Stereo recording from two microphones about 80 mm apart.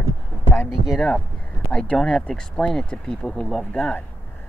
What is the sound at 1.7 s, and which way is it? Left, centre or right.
Speech, centre.